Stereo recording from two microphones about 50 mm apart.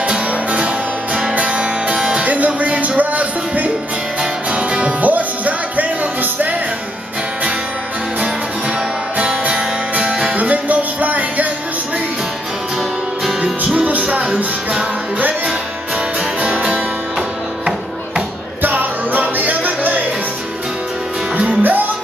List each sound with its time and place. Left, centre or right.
0.0 s music: right
2.2 s music: right
9.1 s music: right
10.3 s music: right
13.8 s music: right
16.3 s music: right
18.6 s music: right
21.4 s music: right